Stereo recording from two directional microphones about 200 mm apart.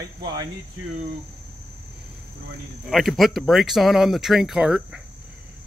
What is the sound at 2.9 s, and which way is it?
Speech, centre (ahead or behind).